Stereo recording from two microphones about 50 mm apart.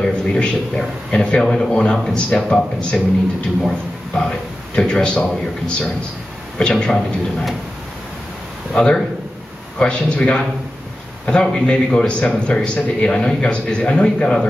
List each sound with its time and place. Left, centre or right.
0.1 s a sound: left
1.1 s a man's voice: centre
3.6 s a man's voice: centre
5.2 s a man's voice: centre
6.9 s a man's voice: centre
8.7 s a man's voice: centre